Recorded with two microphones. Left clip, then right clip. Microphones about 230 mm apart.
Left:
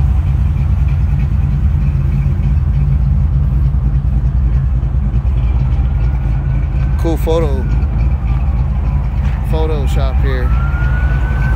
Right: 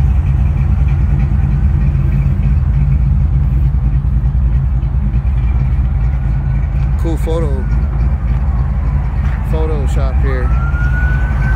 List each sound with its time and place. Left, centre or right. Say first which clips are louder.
7.1 s vehicle: left 4 dB; centre
9.5 s vehicle: left 2 dB; centre